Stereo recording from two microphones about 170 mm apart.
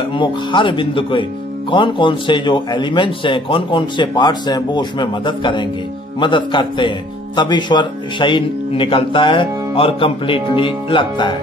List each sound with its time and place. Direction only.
0.1 s a man's voice: 30° left (ahead or behind)